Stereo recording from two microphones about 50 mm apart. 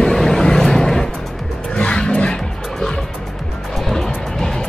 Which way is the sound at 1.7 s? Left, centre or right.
Left.